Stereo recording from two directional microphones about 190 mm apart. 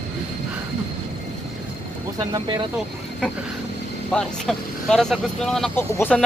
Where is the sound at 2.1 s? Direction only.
25° right (ahead or behind).